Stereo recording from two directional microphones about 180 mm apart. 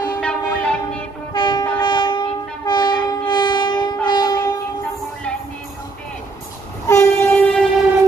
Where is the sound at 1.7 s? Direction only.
25° left (ahead or behind).